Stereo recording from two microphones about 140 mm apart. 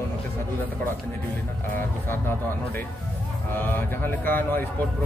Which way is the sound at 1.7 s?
15° left (ahead or behind).